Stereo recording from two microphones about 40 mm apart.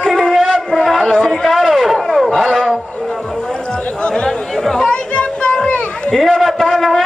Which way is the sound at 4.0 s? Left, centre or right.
Left.